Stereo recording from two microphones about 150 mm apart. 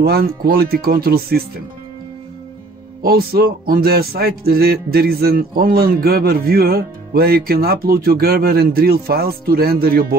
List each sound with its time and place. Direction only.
0.0 s speech: 90° right
3.0 s speech: 90° right